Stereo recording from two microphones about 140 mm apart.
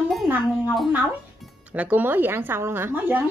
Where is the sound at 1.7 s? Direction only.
10° right (ahead or behind).